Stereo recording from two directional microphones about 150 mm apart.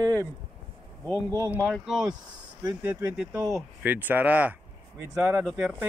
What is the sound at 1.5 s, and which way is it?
Speech, centre (ahead or behind).